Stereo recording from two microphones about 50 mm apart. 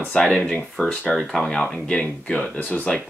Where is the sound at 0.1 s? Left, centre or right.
Centre.